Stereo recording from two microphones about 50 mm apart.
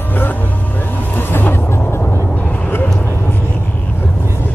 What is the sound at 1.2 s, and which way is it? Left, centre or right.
Vehicle, left.